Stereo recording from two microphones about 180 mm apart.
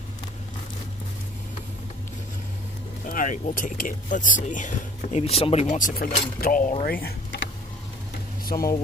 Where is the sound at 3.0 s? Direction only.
50° left (ahead or behind).